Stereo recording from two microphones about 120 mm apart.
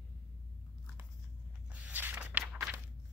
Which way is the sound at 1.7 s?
15° right (ahead or behind).